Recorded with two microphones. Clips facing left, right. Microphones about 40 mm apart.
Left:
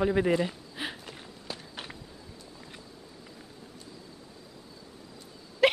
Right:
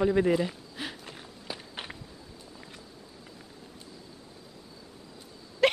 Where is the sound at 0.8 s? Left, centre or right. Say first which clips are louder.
Left 2 dB; centre.